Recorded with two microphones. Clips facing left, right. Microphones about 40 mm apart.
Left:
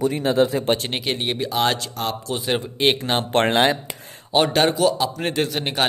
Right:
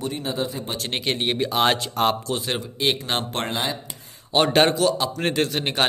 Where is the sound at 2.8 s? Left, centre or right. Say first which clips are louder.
Left 4 dB; left.